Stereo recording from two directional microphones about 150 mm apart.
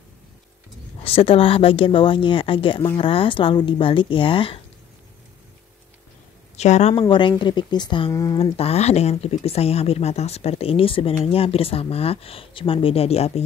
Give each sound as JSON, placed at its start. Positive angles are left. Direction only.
{"t": 1.0, "sound": "speech", "side_deg": 40}
{"t": 6.5, "sound": "speech", "side_deg": 50}
{"t": 7.0, "sound": "speech", "side_deg": 35}
{"t": 8.4, "sound": "speech", "side_deg": 40}